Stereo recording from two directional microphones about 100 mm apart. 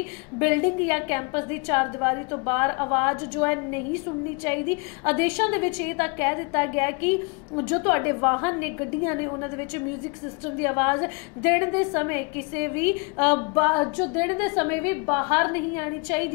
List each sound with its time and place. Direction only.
0.4 s a woman's voice: 20° left (ahead or behind)